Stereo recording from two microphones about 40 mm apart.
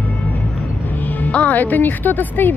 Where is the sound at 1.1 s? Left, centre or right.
Left.